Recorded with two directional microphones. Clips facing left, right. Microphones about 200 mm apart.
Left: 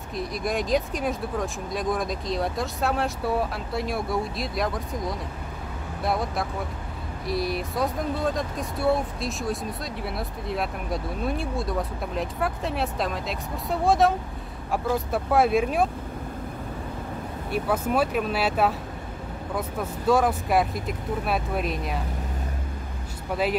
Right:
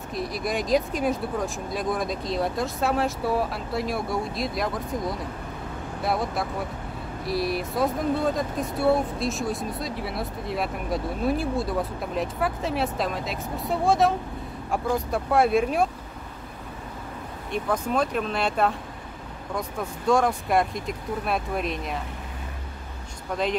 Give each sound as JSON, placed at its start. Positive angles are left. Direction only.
{"t": 0.1, "sound": "speech", "side_deg": 0}
{"t": 17.5, "sound": "speech", "side_deg": 5}